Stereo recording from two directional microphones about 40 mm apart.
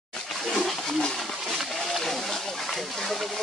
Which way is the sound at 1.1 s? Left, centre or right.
Centre.